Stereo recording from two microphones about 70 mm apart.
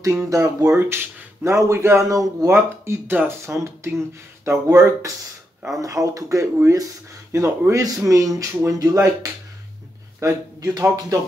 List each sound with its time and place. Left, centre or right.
0.0 s speech: right
0.7 s speech: right
2.0 s speech: right
2.5 s speech: right
5.8 s speech: right
8.8 s speech: right
10.6 s speech: right